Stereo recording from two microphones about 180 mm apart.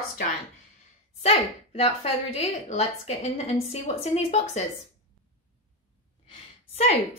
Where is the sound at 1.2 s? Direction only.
35° left (ahead or behind).